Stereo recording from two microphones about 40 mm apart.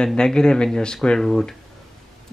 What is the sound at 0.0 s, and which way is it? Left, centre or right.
Speech, centre.